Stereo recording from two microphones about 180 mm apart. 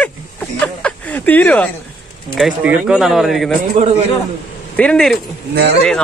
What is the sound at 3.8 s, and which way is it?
Speech, 35° right (ahead or behind).